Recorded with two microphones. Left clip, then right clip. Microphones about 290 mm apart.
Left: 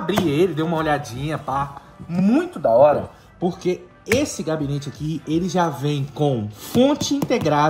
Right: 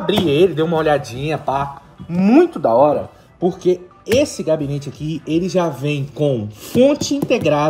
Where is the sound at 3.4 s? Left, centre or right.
Centre.